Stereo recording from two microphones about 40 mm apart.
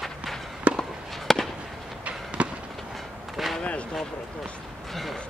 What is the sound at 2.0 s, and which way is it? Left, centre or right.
Fireworks, right.